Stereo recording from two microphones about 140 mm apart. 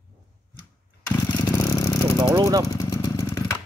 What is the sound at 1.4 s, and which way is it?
Vehicle, 25° left (ahead or behind).